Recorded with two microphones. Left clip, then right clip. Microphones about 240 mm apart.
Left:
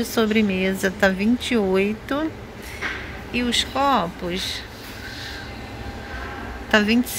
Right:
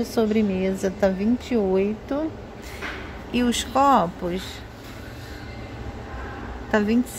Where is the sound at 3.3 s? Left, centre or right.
Right.